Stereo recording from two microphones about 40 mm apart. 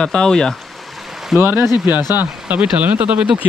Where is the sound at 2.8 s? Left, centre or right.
Right.